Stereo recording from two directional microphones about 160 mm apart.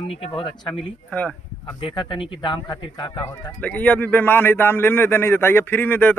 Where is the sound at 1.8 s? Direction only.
30° left (ahead or behind).